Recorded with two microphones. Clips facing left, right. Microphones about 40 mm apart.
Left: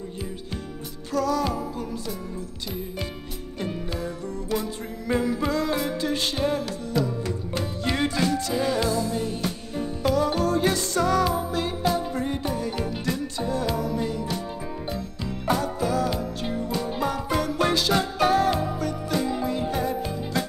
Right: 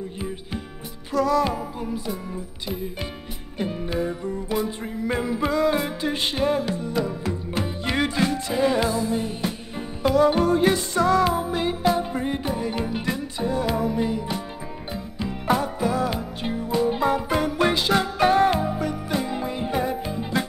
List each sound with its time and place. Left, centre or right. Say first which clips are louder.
1.1 s music: right 3 dB; centre
3.5 s music: right 5 dB; centre